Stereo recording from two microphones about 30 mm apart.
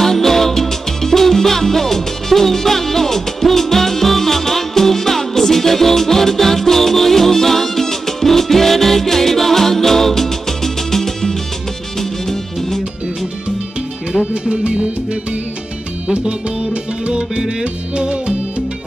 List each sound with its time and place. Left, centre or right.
0.0 s salsa music: centre
12.0 s music: centre
14.3 s music: right
17.9 s music: right